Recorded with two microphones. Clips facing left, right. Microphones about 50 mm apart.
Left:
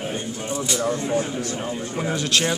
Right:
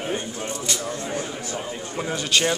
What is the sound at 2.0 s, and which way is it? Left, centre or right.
Speech, centre.